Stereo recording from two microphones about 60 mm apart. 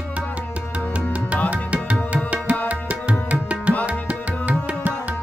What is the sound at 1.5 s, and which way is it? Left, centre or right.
Music, right.